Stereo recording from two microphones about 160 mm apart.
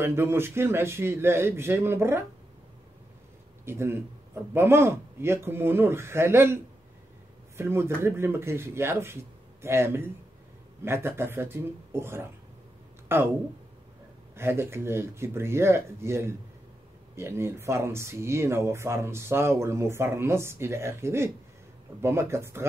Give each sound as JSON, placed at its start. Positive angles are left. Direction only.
{"t": 0.0, "sound": "speech", "side_deg": -15}
{"t": 3.6, "sound": "speech", "side_deg": -15}
{"t": 14.3, "sound": "speech", "side_deg": -15}